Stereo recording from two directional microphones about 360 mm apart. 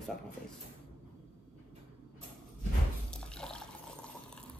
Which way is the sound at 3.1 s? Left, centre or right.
Centre.